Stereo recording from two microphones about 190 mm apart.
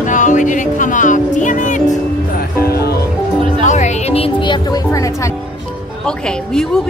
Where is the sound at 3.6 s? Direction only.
40° left (ahead or behind).